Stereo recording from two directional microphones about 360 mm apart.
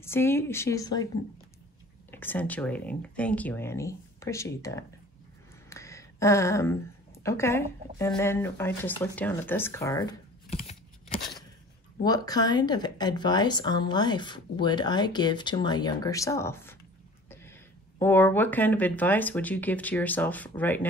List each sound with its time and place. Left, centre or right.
0.0 s speech: centre
2.0 s speech: centre
5.7 s a sound: centre
7.2 s speech: centre
10.5 s a sound: centre
12.0 s speech: centre